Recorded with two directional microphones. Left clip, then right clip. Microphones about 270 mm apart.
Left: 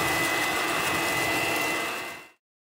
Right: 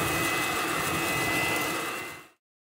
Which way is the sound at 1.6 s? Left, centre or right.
Left.